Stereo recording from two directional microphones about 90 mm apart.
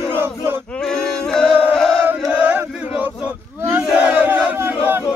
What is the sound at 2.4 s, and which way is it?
Chant, 15° right (ahead or behind).